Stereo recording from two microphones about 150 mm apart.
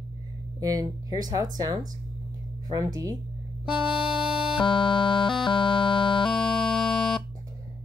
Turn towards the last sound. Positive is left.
turn(degrees=5)  # may be behind; listen again after turning